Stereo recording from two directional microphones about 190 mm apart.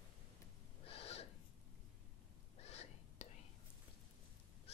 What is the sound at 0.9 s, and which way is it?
Gasp, 30° left (ahead or behind).